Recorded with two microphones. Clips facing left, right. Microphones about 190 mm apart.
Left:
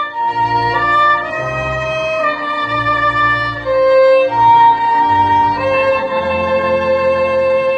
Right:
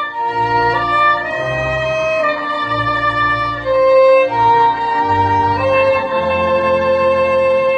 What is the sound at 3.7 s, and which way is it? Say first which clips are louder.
Violin: even; centre (ahead or behind).